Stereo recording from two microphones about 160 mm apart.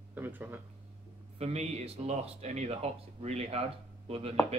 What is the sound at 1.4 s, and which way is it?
Speech, 40° right (ahead or behind).